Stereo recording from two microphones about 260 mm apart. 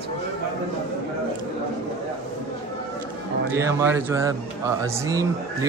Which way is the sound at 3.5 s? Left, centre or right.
Centre.